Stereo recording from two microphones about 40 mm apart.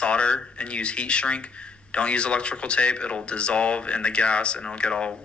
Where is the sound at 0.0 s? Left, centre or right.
Left.